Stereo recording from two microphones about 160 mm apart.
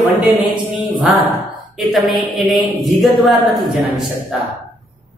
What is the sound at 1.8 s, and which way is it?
A man's voice, centre (ahead or behind).